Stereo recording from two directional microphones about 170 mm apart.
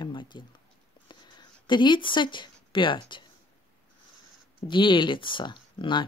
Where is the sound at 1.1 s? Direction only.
25° left (ahead or behind).